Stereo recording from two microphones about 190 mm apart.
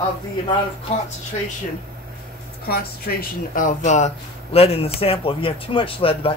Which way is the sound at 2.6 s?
55° left (ahead or behind).